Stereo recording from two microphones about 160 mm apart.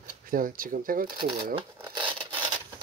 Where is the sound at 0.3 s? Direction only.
60° right (ahead or behind).